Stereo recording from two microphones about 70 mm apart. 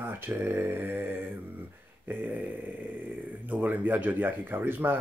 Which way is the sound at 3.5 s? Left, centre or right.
Right.